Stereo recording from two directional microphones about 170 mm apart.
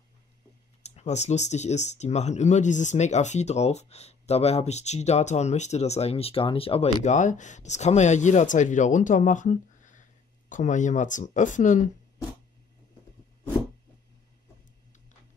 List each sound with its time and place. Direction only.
0.8 s speech: 40° left (ahead or behind)